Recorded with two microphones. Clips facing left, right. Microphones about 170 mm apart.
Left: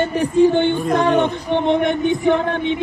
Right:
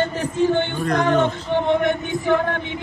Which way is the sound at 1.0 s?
15° left (ahead or behind).